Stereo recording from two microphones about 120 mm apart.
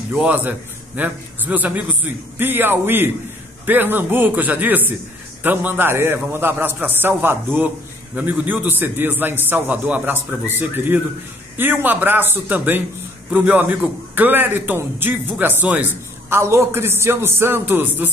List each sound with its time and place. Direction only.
0.2 s a man's voice: 10° right (ahead or behind)